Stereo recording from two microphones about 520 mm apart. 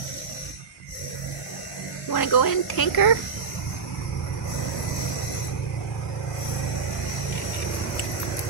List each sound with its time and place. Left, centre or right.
2.0 s speech: left